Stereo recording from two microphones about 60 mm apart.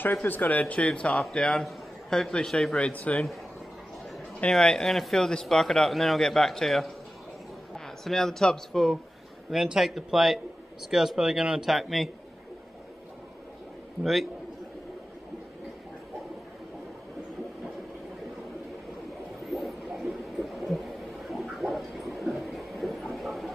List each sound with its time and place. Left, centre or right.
0.0 s a man's voice: left; by 2.9 s centre
2.9 s speech: left
4.5 s a man's voice: centre
9.5 s a man's voice: centre
19.5 s a sound: centre